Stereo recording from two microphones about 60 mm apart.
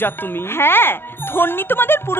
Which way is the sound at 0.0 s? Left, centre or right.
Left.